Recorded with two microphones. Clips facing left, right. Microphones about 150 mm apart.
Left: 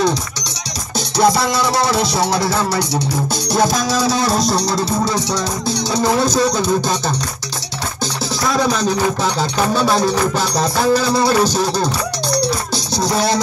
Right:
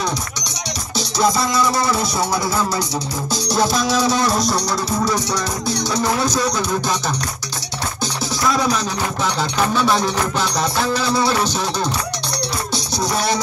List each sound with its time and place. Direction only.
0.9 s music: 65° left (ahead or behind)
3.4 s music: 50° left (ahead or behind); by 6.6 s 30° left (ahead or behind)
8.5 s music: 30° left (ahead or behind)